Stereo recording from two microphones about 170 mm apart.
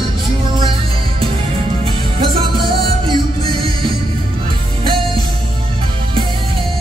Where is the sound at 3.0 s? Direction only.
25° right (ahead or behind).